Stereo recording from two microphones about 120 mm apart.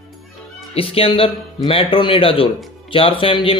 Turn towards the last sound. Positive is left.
turn(degrees=45)  # may be behind; listen again after turning